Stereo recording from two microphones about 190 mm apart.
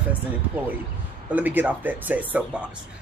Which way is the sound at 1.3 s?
10° right (ahead or behind).